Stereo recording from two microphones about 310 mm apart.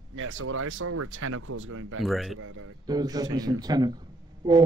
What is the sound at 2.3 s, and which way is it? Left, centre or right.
Speech, right.